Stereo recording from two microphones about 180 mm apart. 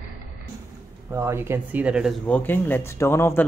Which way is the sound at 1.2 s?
15° right (ahead or behind).